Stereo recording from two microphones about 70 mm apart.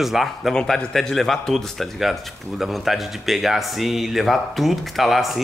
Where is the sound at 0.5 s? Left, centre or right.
Centre.